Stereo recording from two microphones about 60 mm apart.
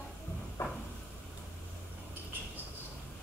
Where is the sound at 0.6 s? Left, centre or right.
Left.